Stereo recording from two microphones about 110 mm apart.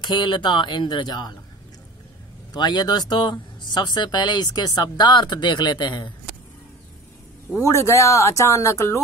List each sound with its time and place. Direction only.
0.0 s speech: 45° left (ahead or behind)
2.5 s speech: 40° left (ahead or behind)
7.5 s speech: 25° left (ahead or behind)